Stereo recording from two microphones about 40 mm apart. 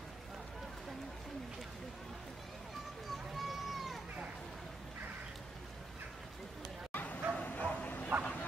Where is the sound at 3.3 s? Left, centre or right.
Centre.